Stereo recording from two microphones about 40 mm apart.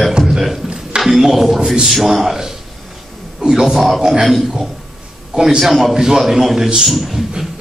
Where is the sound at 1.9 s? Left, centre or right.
Centre.